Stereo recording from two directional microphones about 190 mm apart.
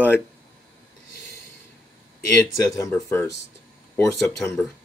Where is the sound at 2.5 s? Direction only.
15° left (ahead or behind).